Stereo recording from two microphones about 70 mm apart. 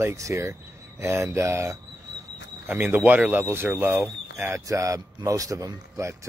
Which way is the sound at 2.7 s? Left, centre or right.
Right.